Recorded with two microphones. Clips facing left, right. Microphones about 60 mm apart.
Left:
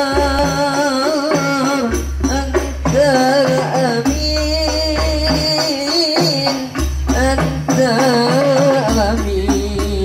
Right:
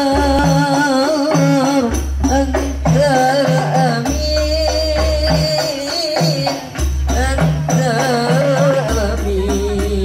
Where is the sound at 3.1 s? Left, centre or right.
Left.